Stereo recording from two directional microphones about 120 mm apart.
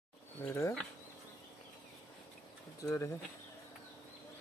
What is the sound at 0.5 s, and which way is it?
Speech, 25° left (ahead or behind).